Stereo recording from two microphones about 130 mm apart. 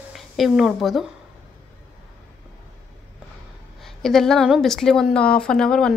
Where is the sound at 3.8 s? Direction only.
5° left (ahead or behind).